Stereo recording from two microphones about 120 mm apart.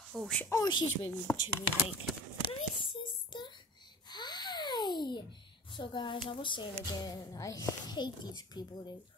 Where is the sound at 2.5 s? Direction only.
45° left (ahead or behind).